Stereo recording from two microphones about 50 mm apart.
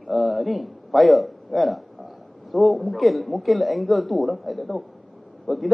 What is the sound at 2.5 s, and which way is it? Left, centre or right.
A man's voice, centre.